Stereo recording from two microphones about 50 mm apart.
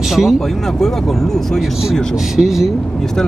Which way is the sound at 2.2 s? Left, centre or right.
Centre.